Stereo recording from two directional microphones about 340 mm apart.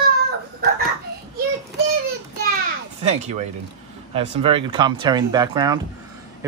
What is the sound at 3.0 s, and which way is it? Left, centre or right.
Speech, centre.